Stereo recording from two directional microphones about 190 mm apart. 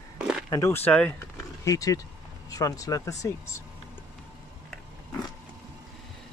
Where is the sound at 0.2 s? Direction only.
5° right (ahead or behind).